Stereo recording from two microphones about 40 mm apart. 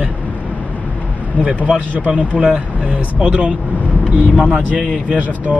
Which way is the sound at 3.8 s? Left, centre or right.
Left.